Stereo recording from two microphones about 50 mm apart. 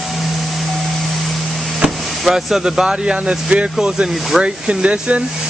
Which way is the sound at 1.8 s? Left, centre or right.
Centre.